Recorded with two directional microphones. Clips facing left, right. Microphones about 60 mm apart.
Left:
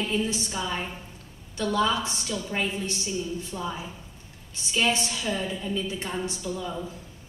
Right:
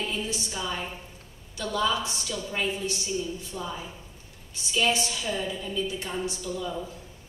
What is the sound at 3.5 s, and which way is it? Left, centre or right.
Speech, left.